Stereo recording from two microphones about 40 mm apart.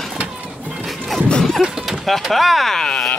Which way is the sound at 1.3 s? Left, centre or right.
Centre.